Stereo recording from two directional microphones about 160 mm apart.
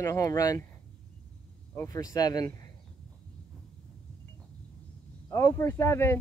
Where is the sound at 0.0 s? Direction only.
20° left (ahead or behind).